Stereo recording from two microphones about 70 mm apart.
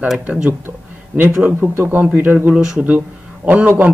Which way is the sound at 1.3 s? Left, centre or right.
Centre.